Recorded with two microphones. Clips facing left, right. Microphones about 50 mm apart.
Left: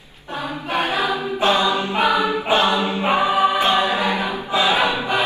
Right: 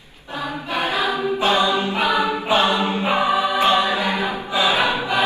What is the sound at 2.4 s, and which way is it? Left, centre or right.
A capella, left.